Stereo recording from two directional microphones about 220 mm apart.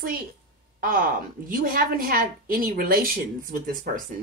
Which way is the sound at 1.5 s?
40° right (ahead or behind).